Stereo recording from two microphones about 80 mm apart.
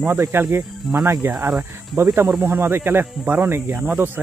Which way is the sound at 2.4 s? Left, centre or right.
Right.